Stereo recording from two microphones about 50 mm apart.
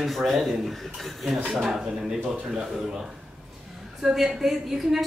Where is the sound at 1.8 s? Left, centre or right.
Centre.